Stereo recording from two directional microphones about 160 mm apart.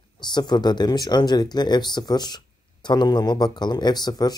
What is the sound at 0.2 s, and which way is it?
Speech, 25° left (ahead or behind).